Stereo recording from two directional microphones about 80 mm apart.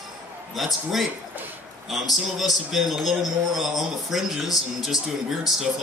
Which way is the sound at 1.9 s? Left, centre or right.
Centre.